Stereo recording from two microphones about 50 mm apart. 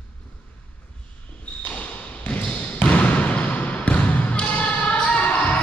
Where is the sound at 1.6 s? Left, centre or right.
Left.